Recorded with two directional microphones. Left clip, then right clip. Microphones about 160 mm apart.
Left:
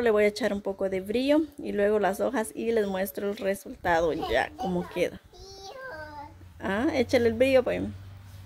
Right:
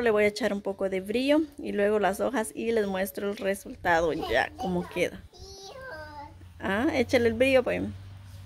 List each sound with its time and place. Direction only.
0.0 s speech: 5° left (ahead or behind)
6.6 s speech: centre (ahead or behind)